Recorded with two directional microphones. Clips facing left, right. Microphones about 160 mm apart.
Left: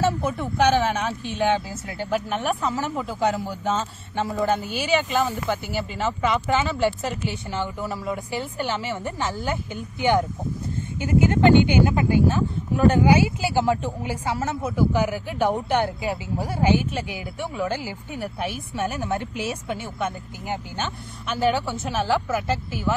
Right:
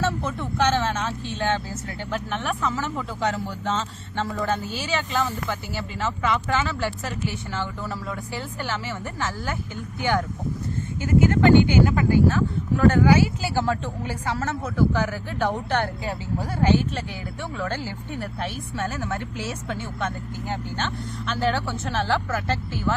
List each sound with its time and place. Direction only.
0.0 s speech: 10° left (ahead or behind)